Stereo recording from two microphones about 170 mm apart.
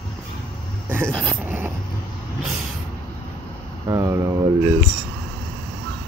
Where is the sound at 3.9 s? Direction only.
15° right (ahead or behind).